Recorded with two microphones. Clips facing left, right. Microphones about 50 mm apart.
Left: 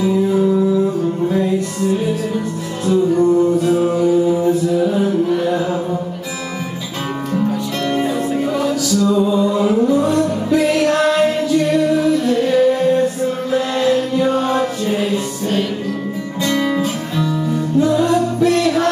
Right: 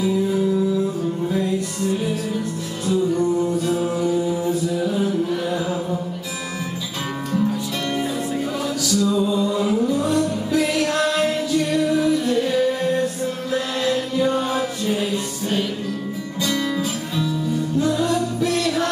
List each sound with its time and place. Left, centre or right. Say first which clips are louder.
0.0 s music: left 5 dB; centre
4.0 s mantra: left 7 dB; centre
7.3 s music: left 3 dB; centre
16.4 s music: left 5 dB; centre
17.2 s music: left 4 dB; centre